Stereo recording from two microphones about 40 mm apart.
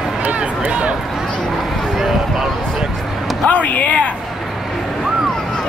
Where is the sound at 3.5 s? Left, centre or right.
Left.